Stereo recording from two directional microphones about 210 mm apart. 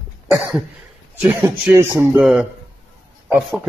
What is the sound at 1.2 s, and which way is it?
A man's voice, 5° right (ahead or behind).